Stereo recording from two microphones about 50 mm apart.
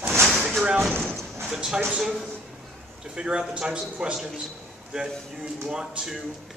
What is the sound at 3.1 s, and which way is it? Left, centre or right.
Speech, centre.